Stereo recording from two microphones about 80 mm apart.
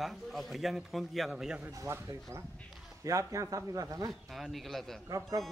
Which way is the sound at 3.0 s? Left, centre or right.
Right.